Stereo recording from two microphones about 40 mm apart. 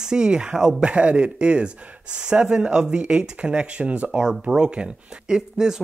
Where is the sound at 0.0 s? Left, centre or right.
Centre.